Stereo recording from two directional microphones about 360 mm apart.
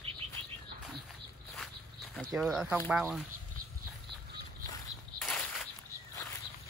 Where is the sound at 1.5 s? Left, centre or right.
Centre.